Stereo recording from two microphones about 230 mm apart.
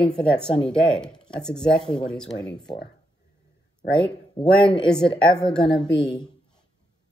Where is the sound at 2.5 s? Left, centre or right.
Centre.